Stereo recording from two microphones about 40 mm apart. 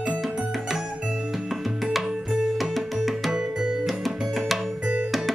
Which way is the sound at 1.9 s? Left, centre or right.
Centre.